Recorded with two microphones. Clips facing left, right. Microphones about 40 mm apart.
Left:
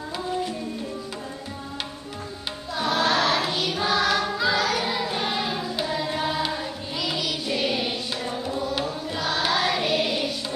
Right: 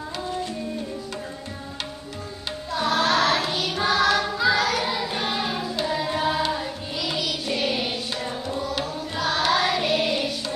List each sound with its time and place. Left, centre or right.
2.7 s choir: centre